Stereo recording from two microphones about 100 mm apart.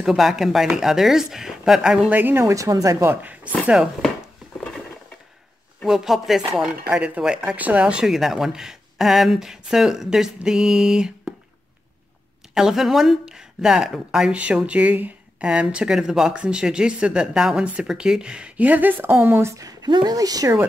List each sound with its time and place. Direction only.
0.0 s speech: 5° right (ahead or behind)
2.1 s speech: 20° right (ahead or behind)
3.1 s speech: 15° right (ahead or behind)
5.9 s speech: 5° right (ahead or behind)
12.5 s speech: 5° right (ahead or behind); by 19.9 s 35° right (ahead or behind)
19.9 s speech: 45° right (ahead or behind)